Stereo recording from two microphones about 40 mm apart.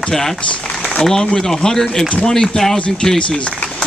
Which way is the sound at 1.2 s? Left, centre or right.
Centre.